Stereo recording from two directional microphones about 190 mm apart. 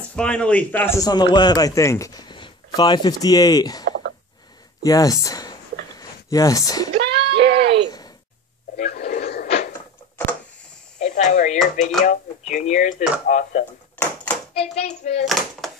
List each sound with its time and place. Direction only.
0.1 s a man's voice: 5° left (ahead or behind)
4.8 s a sound: 20° left (ahead or behind)
6.9 s a sound: 60° right (ahead or behind)
9.1 s cupboard open or close: 55° left (ahead or behind)
11.0 s a sound: 40° left (ahead or behind)
12.0 s speech: 40° left (ahead or behind)
14.0 s hands: 10° left (ahead or behind)
14.5 s speech: 35° left (ahead or behind)
15.2 s speech: centre (ahead or behind)